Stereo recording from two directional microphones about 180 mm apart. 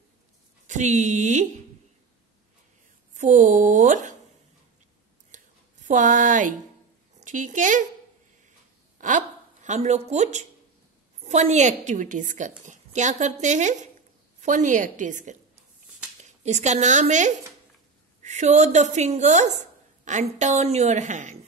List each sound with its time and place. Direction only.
0.7 s a woman's voice: 40° right (ahead or behind)
3.2 s speech: 40° right (ahead or behind)
5.3 s a sound: 45° right (ahead or behind)
7.2 s a woman's voice: 45° right (ahead or behind)
8.9 s a woman's voice: 45° right (ahead or behind)